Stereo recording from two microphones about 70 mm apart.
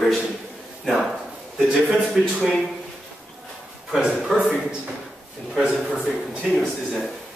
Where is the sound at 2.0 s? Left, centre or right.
Centre.